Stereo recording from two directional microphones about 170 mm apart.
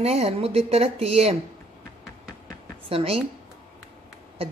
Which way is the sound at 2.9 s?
35° right (ahead or behind).